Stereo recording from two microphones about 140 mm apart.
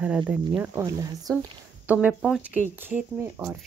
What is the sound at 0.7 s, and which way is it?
Speech, 20° right (ahead or behind).